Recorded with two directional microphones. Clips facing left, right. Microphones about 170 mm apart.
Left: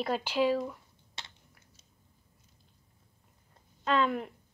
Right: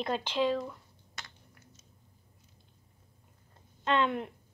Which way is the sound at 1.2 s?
30° left (ahead or behind).